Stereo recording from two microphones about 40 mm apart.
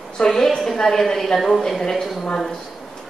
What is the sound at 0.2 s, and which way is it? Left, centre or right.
A woman's voice, centre.